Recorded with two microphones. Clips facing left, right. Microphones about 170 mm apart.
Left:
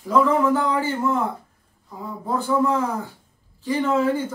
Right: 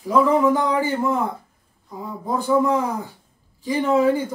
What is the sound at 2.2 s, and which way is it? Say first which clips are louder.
A man's voice: right 2 dB; 15° right (ahead or behind).